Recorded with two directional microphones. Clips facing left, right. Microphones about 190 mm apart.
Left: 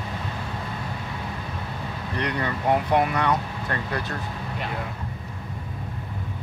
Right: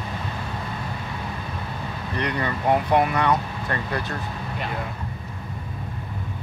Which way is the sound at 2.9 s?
10° right (ahead or behind).